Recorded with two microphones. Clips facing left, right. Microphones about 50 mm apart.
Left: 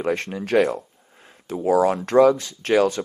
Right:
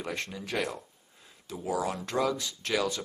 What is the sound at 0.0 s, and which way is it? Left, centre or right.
Speech, left.